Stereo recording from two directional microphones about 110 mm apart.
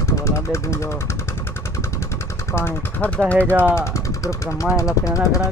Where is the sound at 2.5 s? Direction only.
20° left (ahead or behind).